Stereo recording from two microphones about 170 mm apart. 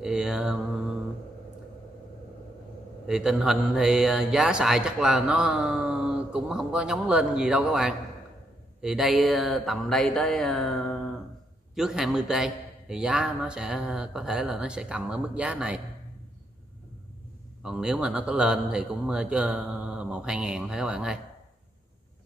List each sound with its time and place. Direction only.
0.0 s speech: 5° right (ahead or behind)
3.1 s speech: 5° right (ahead or behind)
17.6 s speech: 5° right (ahead or behind)